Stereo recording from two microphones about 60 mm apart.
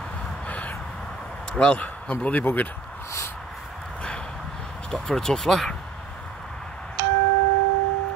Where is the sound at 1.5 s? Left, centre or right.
Centre.